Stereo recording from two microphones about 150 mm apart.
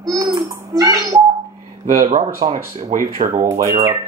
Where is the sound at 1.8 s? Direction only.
60° right (ahead or behind).